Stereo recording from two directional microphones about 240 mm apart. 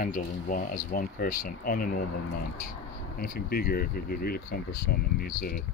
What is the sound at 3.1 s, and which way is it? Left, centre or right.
Speech, left.